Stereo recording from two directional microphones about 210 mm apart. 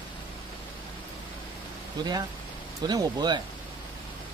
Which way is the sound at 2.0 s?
20° right (ahead or behind).